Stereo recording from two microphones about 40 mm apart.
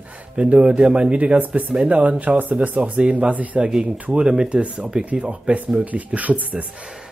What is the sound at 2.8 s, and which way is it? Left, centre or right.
Speech, right.